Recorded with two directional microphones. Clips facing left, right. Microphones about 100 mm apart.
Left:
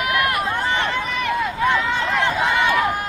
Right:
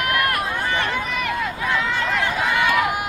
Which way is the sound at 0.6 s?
20° left (ahead or behind).